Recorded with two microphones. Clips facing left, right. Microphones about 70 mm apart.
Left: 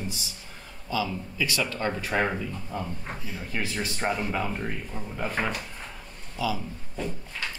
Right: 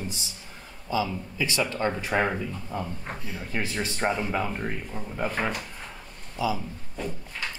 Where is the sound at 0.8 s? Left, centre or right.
Right.